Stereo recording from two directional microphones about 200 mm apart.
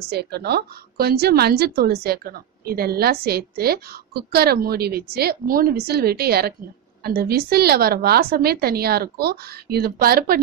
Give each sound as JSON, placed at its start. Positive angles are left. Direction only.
{"t": 0.1, "sound": "a woman's voice", "side_deg": -55}